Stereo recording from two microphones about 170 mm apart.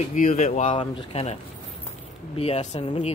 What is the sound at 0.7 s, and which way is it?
Speech, 30° left (ahead or behind).